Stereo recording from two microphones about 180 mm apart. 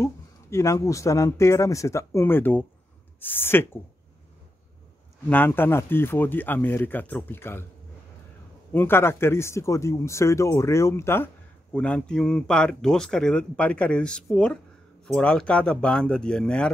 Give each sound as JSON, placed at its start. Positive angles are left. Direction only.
{"t": 0.0, "sound": "speech", "side_deg": 15}
{"t": 5.3, "sound": "speech", "side_deg": 10}
{"t": 8.7, "sound": "speech", "side_deg": 15}